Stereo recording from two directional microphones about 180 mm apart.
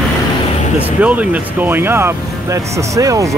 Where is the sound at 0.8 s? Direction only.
10° right (ahead or behind).